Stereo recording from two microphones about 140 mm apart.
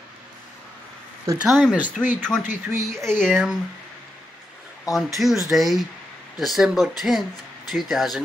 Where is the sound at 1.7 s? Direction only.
10° right (ahead or behind).